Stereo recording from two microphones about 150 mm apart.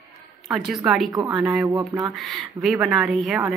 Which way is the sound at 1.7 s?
25° right (ahead or behind).